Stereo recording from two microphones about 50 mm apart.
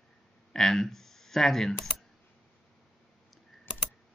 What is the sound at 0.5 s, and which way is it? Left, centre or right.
Speech, centre.